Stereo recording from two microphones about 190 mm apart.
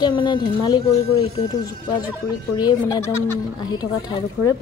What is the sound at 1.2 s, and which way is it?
Speech, 35° left (ahead or behind).